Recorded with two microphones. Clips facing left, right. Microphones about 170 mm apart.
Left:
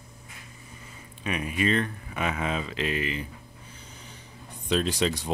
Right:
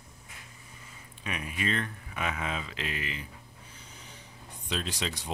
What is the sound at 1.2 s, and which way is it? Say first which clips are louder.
Speech: left 7 dB; 20° left (ahead or behind).